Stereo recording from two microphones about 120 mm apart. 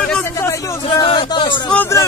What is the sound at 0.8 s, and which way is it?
Speech, 45° left (ahead or behind).